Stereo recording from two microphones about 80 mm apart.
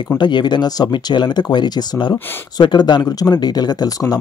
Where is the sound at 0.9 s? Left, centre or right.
Left.